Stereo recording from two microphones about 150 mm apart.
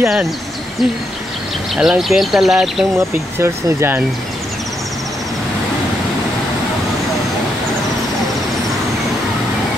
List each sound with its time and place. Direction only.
0.0 s speech: 5° right (ahead or behind)
1.8 s speech: centre (ahead or behind)
3.3 s speech: 15° right (ahead or behind)